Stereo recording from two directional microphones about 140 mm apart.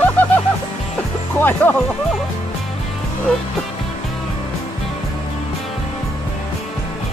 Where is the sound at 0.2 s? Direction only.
15° left (ahead or behind).